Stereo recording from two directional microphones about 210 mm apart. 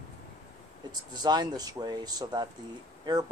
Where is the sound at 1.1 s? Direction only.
20° right (ahead or behind).